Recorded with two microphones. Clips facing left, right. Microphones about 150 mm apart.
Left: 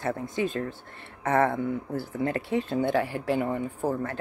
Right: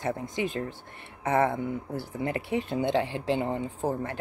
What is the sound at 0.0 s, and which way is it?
Speech, 15° right (ahead or behind).